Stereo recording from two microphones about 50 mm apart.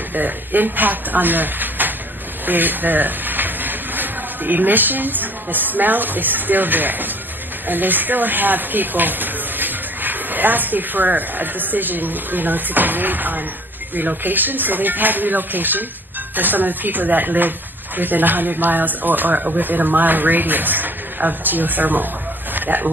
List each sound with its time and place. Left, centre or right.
0.1 s speech: right